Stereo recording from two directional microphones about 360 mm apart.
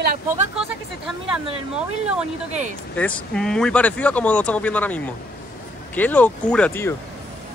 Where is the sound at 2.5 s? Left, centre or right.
Centre.